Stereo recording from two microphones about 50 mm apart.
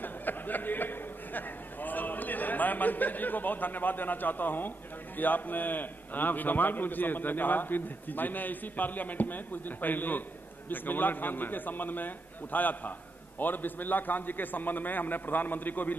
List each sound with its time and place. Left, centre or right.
0.0 s a man's voice: left